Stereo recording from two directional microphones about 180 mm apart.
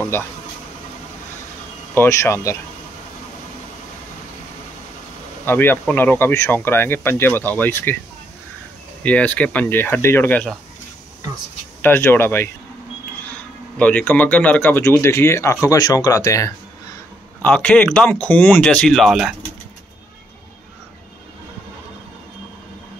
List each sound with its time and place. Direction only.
0.1 s speech: 15° left (ahead or behind)
2.0 s speech: 15° left (ahead or behind)
5.4 s speech: 10° left (ahead or behind)
9.0 s speech: 10° left (ahead or behind)
11.8 s speech: 10° left (ahead or behind)